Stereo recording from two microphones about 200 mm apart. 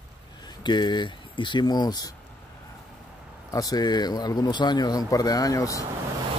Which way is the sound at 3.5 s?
20° left (ahead or behind).